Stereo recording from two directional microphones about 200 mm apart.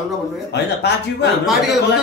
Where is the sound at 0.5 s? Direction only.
60° left (ahead or behind).